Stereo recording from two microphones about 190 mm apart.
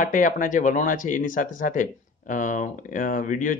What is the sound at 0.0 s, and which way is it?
Speech, 45° left (ahead or behind).